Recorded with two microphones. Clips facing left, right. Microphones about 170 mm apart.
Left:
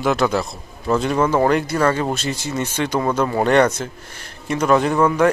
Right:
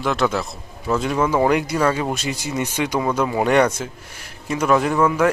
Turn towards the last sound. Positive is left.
turn(degrees=-5)  # may be behind; listen again after turning